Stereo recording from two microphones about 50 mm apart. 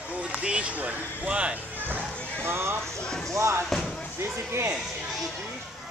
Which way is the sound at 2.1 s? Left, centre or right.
Left.